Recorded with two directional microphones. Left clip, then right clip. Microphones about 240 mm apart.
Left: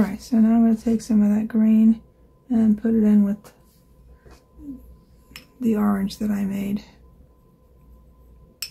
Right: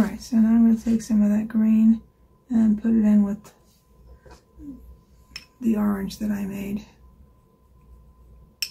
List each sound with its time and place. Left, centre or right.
0.0 s speech: left
5.6 s speech: left